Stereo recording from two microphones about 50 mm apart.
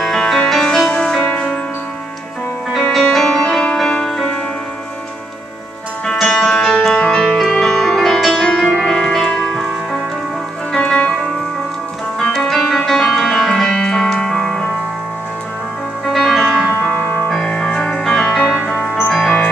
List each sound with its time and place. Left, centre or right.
0.0 s music: centre
2.9 s music: centre
3.3 s music: centre
6.2 s music: centre
6.7 s music: centre
7.1 s music: left
7.6 s music: centre
9.5 s music: centre
10.8 s music: left
12.2 s music: centre; by 14.7 s left
16.1 s music: centre
16.9 s music: left
17.5 s music: centre